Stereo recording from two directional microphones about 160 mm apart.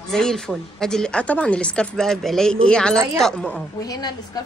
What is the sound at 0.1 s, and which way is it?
Speech, 5° left (ahead or behind).